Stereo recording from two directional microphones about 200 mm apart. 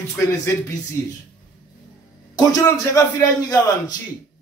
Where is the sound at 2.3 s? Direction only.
20° left (ahead or behind).